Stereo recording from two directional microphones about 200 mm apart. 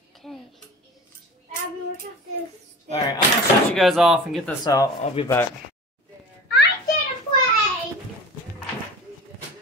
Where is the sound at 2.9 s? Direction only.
20° left (ahead or behind).